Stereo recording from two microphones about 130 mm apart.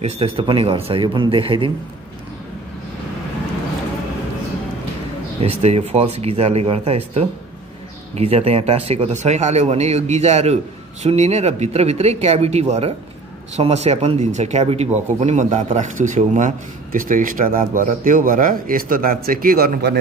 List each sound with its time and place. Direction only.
0.0 s speech: 50° right (ahead or behind)
5.4 s a man's voice: 50° right (ahead or behind); by 19.8 s 90° right